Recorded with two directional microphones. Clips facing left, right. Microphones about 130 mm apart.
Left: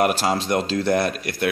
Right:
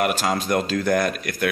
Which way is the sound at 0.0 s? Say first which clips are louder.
Left 2 dB; 35° left (ahead or behind).